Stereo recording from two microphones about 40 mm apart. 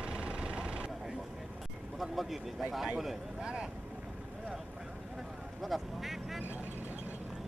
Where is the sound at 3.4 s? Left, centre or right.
Right.